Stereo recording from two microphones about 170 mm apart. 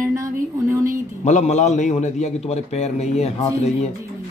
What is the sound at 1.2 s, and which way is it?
A man's voice, 45° left (ahead or behind).